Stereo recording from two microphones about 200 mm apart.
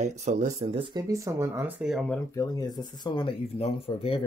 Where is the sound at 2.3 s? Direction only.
15° left (ahead or behind).